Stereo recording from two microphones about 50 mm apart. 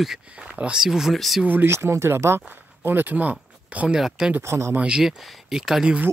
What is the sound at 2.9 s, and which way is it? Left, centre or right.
Speech, right.